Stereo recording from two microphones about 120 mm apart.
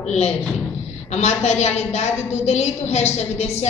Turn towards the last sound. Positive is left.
turn(degrees=65)  # may be behind; listen again after turning